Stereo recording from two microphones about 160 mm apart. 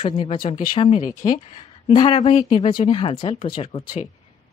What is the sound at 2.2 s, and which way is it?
Speech, 45° left (ahead or behind).